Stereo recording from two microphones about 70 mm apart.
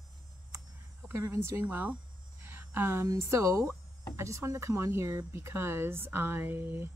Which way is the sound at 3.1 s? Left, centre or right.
Right.